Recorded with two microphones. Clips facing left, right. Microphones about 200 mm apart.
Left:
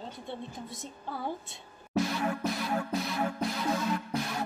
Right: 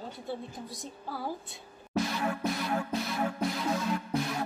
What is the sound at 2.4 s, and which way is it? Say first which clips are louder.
Music: even; centre (ahead or behind).